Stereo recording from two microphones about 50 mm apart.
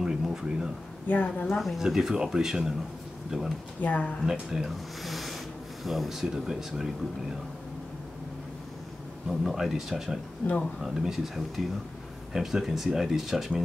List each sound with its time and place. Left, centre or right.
0.0 s a sound: centre
1.0 s a woman's voice: left
1.8 s speech: centre
3.8 s a woman's voice: left
4.3 s speech: centre
9.3 s speech: centre